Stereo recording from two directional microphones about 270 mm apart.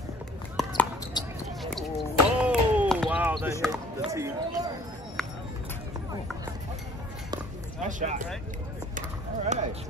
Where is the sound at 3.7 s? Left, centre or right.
Centre.